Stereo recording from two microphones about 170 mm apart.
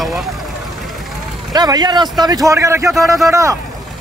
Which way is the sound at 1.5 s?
25° right (ahead or behind).